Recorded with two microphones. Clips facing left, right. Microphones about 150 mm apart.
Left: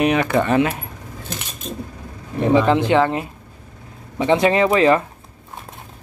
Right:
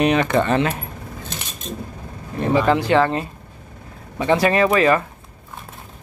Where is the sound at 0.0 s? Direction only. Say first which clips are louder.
Even; 5° left (ahead or behind).